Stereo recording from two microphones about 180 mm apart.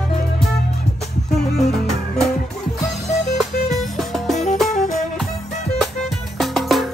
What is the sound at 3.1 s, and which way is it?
Music, centre (ahead or behind).